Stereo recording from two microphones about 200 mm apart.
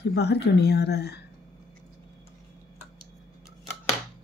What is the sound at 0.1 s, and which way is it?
A woman's voice, 55° left (ahead or behind).